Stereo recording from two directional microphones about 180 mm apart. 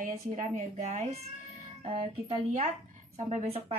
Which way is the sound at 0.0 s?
45° right (ahead or behind).